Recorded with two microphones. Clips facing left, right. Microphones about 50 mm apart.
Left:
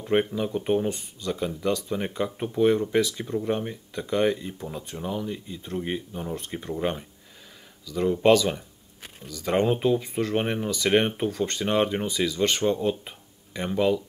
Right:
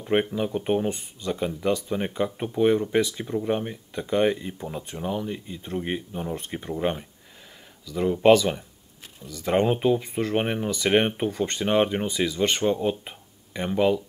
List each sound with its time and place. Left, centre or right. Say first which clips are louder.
0.0 s speech: even; centre
0.8 s speech: right 1 dB; right